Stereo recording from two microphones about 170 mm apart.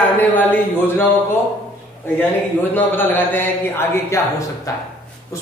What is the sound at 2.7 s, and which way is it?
Speech, 10° left (ahead or behind).